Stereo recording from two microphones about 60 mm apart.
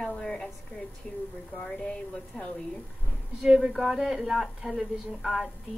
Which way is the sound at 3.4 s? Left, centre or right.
Centre.